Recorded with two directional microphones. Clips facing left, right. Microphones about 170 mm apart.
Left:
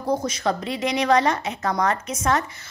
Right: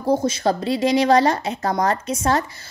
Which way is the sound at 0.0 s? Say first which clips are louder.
Right 4 dB; 30° right (ahead or behind).